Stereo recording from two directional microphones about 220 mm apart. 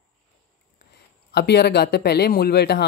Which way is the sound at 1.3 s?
50° left (ahead or behind).